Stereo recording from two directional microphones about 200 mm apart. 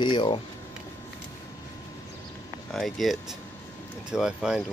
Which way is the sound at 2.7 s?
Centre (ahead or behind).